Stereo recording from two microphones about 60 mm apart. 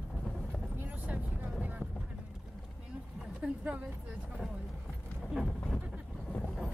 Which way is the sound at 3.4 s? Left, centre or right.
Right.